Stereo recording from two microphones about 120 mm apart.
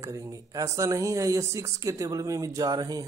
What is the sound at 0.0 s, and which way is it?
Speech, 30° right (ahead or behind).